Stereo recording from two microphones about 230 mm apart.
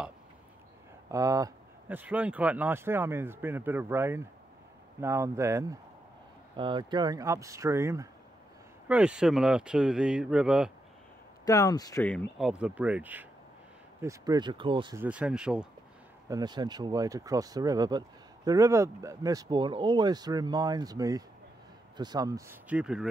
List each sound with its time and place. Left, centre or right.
1.1 s speech: centre
11.4 s speech: centre; by 15.0 s right
15.0 s speech: centre
16.3 s speech: centre